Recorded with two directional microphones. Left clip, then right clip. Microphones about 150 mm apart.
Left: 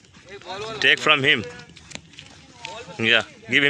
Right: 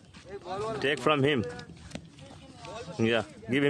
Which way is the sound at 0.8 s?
20° right (ahead or behind).